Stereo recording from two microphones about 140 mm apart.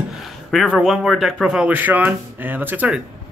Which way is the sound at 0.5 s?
Centre (ahead or behind).